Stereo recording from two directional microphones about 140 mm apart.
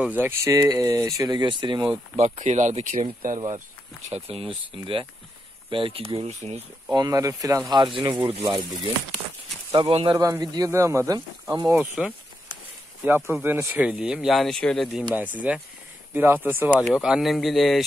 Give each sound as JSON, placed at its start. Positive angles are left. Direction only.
{"t": 0.0, "sound": "speech", "side_deg": -15}
{"t": 2.1, "sound": "speech", "side_deg": -55}
{"t": 3.3, "sound": "speech", "side_deg": -55}
{"t": 4.1, "sound": "speech", "side_deg": -45}
{"t": 6.9, "sound": "speech", "side_deg": -25}
{"t": 9.7, "sound": "speech", "side_deg": -40}
{"t": 10.1, "sound": "speech", "side_deg": -25}
{"t": 11.8, "sound": "speech", "side_deg": -10}
{"t": 15.3, "sound": "speech", "side_deg": -10}
{"t": 16.8, "sound": "speech", "side_deg": -5}